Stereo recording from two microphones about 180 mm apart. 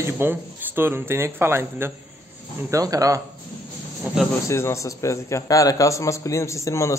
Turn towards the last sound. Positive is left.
turn(degrees=15)  # may be behind; listen again after turning